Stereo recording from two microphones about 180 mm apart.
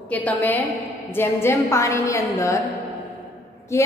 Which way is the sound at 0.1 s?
10° left (ahead or behind).